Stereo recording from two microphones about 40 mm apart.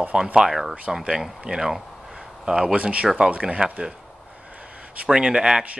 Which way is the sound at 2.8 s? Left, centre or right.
Right.